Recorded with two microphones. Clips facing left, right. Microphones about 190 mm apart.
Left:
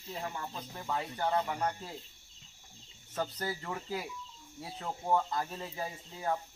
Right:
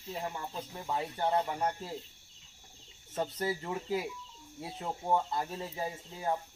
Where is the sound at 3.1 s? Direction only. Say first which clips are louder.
Right 3 dB; 25° right (ahead or behind).